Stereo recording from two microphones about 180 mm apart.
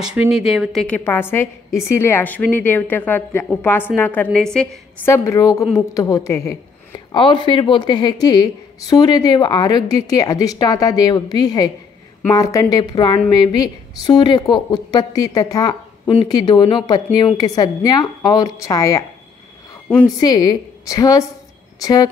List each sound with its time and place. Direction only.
0.0 s a woman's voice: 5° right (ahead or behind)
5.0 s a woman's voice: 15° left (ahead or behind)
7.2 s a woman's voice: 25° left (ahead or behind)
20.2 s a woman's voice: 20° left (ahead or behind)